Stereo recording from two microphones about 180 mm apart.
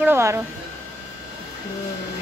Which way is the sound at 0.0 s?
15° right (ahead or behind).